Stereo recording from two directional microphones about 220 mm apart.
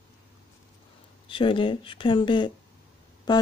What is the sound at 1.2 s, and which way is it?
Speech, 20° left (ahead or behind).